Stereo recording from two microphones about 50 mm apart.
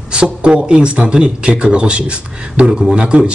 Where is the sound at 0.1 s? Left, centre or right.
Centre.